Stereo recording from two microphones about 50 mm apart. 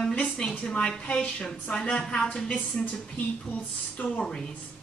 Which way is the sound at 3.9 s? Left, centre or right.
Left.